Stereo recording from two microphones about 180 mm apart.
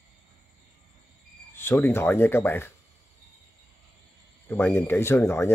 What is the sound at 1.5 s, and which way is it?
Speech, 15° left (ahead or behind).